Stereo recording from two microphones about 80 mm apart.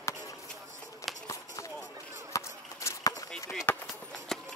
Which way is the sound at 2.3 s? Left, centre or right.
Left.